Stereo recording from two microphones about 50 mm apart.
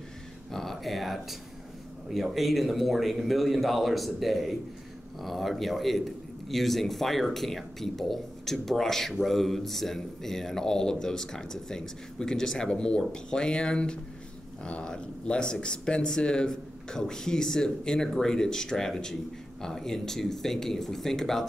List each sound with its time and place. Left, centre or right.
0.5 s a man's voice: centre